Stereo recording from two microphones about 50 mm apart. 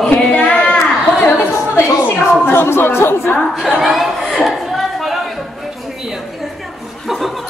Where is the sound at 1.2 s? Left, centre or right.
Left.